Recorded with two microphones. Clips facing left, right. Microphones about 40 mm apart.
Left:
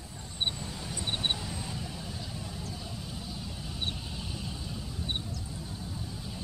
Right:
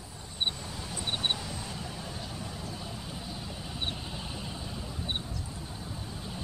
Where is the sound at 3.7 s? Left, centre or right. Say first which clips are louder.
Right 1 dB; centre.